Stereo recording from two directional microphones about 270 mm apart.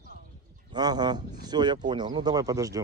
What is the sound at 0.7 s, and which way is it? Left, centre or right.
Speech, centre.